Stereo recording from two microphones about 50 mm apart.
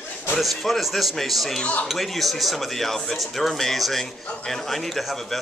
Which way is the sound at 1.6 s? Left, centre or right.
Left.